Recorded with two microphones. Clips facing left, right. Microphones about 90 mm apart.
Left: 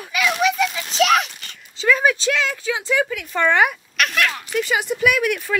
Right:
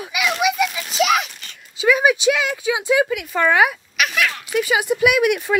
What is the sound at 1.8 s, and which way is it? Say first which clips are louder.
Speech: right 2 dB; 10° right (ahead or behind).